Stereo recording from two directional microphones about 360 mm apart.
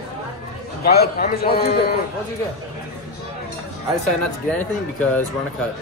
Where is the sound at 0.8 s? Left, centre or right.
Left.